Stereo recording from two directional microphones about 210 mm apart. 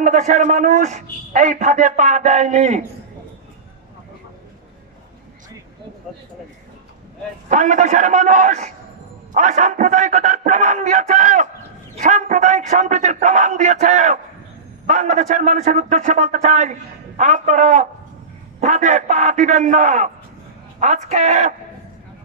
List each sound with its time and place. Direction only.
0.0 s a man's voice: 35° right (ahead or behind)
7.4 s a man's voice: 35° right (ahead or behind)